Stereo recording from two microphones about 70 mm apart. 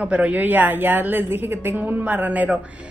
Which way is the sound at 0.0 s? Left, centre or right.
Centre.